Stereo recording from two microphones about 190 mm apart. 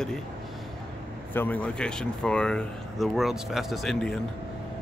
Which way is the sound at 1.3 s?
10° left (ahead or behind).